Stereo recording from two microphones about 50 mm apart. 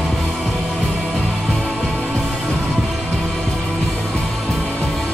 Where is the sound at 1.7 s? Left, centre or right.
Left.